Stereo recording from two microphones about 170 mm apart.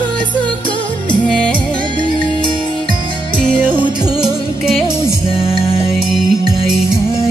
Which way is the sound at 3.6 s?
10° right (ahead or behind).